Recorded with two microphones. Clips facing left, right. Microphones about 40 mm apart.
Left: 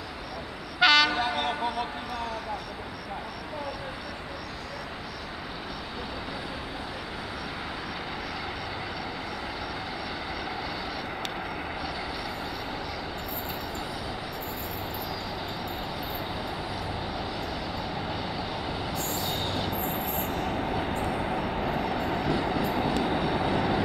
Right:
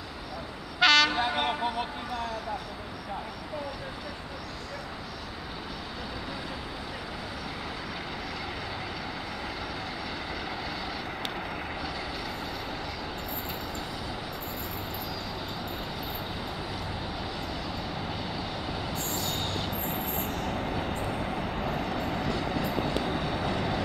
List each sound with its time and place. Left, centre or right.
0.7 s train: centre
1.2 s a sound: centre
19.1 s train: centre
21.0 s vehicle: centre